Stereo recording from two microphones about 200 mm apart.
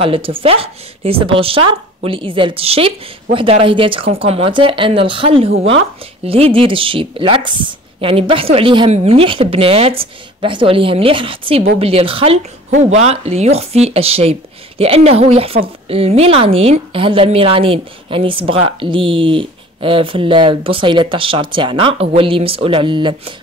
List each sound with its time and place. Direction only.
0.0 s speech: 25° right (ahead or behind)